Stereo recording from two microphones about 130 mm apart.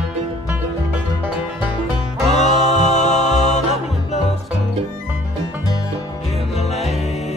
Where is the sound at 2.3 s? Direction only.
60° left (ahead or behind).